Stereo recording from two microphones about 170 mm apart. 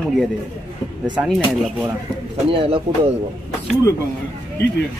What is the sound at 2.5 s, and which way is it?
Speech, 30° right (ahead or behind).